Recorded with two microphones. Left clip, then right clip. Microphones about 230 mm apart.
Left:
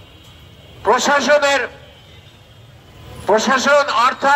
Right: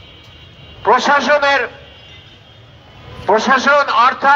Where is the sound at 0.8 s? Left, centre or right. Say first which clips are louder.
Right 2 dB; left.